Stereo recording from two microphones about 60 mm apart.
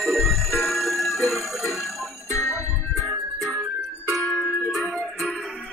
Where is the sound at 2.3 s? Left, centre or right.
Left.